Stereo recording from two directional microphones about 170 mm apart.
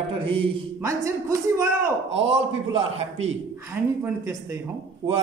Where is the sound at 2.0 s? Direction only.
35° right (ahead or behind).